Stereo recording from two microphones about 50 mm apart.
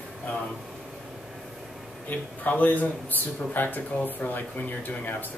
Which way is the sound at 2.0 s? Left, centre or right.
Left.